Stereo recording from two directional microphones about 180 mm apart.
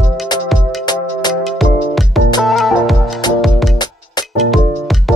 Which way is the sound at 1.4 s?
Centre (ahead or behind).